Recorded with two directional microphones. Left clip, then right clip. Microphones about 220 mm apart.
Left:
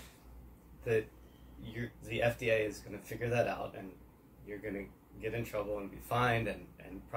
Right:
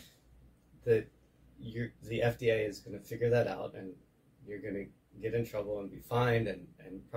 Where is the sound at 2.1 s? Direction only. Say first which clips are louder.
Right 1 dB; 30° right (ahead or behind).